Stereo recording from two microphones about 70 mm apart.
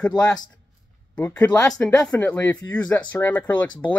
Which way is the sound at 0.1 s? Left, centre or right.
Left.